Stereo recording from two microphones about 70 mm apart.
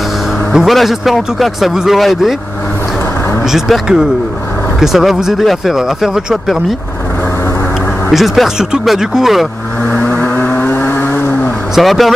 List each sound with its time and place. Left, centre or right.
0.5 s speech: centre
3.4 s speech: centre
8.1 s speech: centre
9.8 s vehicle: left
11.7 s speech: centre